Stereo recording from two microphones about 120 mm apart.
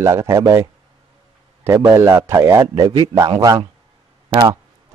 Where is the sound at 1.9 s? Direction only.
20° right (ahead or behind).